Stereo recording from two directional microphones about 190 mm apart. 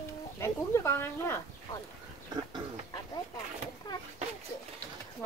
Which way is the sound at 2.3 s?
20° right (ahead or behind).